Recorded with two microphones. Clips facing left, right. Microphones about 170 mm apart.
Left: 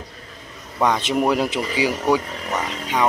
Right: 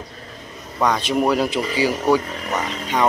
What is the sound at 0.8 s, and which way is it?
Speech, 20° left (ahead or behind).